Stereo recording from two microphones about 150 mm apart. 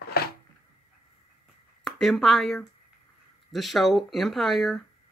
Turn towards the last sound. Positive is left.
turn(degrees=0)  # may be behind; listen again after turning